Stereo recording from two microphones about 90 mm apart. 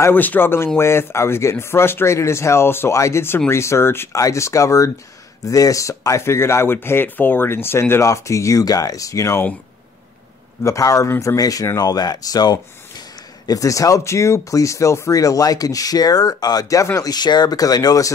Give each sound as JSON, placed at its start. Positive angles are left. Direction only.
{"t": 0.0, "sound": "speech", "side_deg": 20}
{"t": 10.6, "sound": "speech", "side_deg": 40}
{"t": 17.1, "sound": "speech", "side_deg": 50}